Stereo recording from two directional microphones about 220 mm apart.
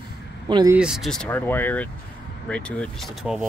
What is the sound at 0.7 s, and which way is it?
Speech, 5° right (ahead or behind).